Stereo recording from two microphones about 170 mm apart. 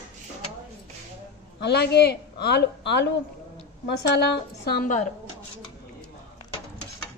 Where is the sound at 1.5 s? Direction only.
75° left (ahead or behind).